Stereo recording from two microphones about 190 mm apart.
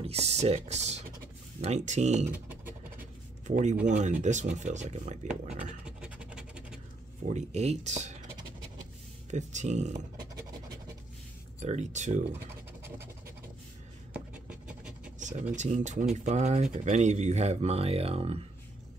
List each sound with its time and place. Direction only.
0.0 s speech: 35° right (ahead or behind)
2.3 s a sound: 10° right (ahead or behind)
3.4 s speech: 40° right (ahead or behind)
5.4 s scratch: 40° right (ahead or behind)
5.9 s scratch: 5° right (ahead or behind)
7.2 s speech: 35° right (ahead or behind)
9.3 s speech: 40° right (ahead or behind)
11.6 s speech: 40° right (ahead or behind)
14.1 s scratch: 5° right (ahead or behind)
15.1 s a sound: 40° right (ahead or behind)
15.5 s speech: 40° right (ahead or behind)